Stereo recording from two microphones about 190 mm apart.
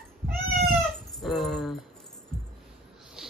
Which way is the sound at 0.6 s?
Centre (ahead or behind).